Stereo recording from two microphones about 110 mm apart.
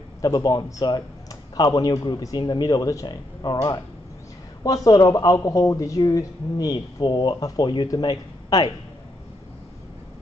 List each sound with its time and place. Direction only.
0.2 s speech: 35° left (ahead or behind)
4.6 s speech: 35° left (ahead or behind)